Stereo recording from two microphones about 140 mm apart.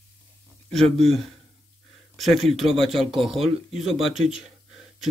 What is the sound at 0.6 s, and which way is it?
A man's voice, centre (ahead or behind).